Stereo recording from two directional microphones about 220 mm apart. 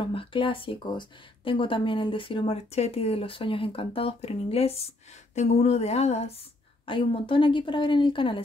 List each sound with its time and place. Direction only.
0.0 s speech: 25° left (ahead or behind)